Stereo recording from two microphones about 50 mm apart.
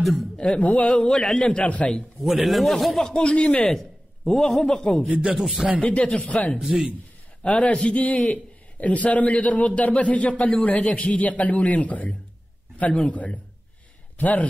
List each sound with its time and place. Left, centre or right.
0.0 s speech: centre
0.6 s a man's voice: left
1.0 s a man's voice: centre
1.6 s a man's voice: left
2.2 s speech: centre
3.1 s a man's voice: left
3.6 s a sound: centre
4.3 s a man's voice: centre
5.2 s speech: centre
5.8 s a man's voice: left
6.6 s a man's voice: centre
7.4 s a man's voice: left